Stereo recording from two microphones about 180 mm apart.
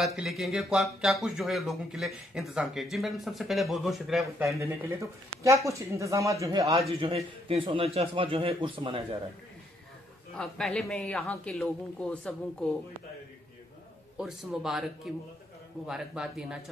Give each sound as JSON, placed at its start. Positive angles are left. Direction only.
{"t": 0.0, "sound": "speech", "side_deg": 0}
{"t": 4.6, "sound": "speech", "side_deg": -15}
{"t": 6.7, "sound": "a man's voice", "side_deg": -30}
{"t": 10.3, "sound": "speech", "side_deg": 0}
{"t": 14.1, "sound": "speech", "side_deg": 0}